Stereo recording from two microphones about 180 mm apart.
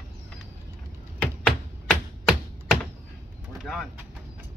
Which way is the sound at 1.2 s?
5° left (ahead or behind).